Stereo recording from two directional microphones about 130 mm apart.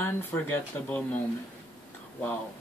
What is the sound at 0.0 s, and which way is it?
Speech, 15° left (ahead or behind).